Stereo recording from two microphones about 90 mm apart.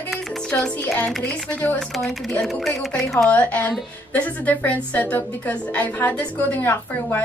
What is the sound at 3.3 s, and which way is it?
A woman's voice, 15° left (ahead or behind).